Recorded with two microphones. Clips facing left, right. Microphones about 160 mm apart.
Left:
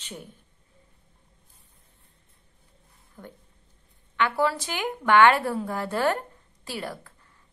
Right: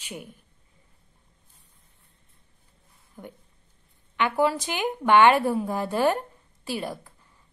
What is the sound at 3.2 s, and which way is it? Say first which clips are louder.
A woman's voice: right 2 dB; 15° right (ahead or behind).